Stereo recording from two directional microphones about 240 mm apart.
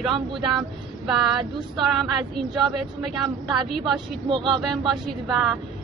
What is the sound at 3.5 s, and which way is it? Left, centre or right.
Speech, centre.